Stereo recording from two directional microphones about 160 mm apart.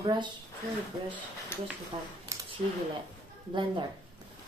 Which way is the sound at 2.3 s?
20° right (ahead or behind).